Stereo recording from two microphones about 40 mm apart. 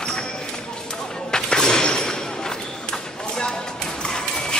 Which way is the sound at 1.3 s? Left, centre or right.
Centre.